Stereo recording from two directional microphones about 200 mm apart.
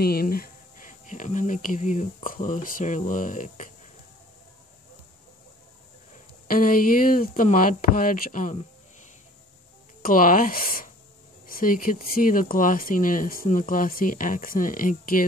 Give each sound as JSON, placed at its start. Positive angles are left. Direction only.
{"t": 0.0, "sound": "speech", "side_deg": 50}
{"t": 6.4, "sound": "speech", "side_deg": 45}
{"t": 10.0, "sound": "speech", "side_deg": 45}